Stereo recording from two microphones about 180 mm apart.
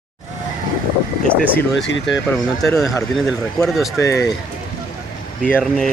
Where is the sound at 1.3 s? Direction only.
10° left (ahead or behind).